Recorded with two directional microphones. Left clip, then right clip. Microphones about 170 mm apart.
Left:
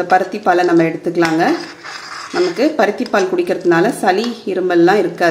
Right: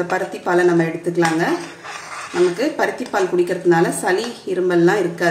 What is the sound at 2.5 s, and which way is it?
A woman's voice, 65° left (ahead or behind).